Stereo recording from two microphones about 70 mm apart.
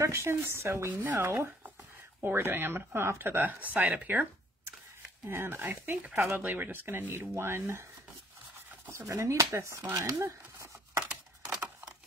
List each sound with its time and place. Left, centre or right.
0.0 s speech: right
5.2 s speech: right
8.9 s speech: right
10.1 s a sound: right